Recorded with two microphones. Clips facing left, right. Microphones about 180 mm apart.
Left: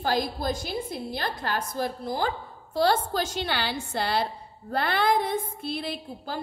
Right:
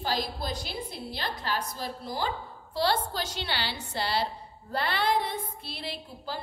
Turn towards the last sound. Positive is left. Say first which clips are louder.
# left 3 dB
turn(degrees=50)  # may be behind; listen again after turning